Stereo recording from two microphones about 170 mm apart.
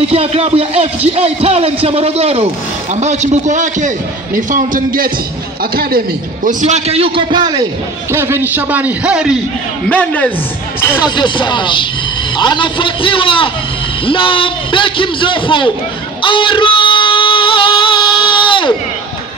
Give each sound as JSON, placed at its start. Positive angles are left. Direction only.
{"t": 0.1, "sound": "a man's voice", "side_deg": -35}
{"t": 8.1, "sound": "a man's voice", "side_deg": -15}
{"t": 9.8, "sound": "a woman's voice", "side_deg": 10}
{"t": 11.1, "sound": "a man's voice", "side_deg": 25}
{"t": 16.2, "sound": "music", "side_deg": 30}